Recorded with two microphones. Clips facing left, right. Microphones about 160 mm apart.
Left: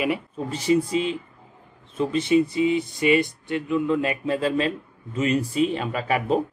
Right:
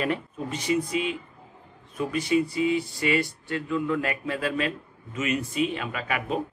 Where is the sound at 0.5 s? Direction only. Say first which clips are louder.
Left 5 dB; 30° left (ahead or behind).